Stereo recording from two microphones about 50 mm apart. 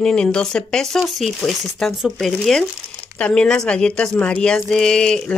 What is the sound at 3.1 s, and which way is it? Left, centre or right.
Speech, left.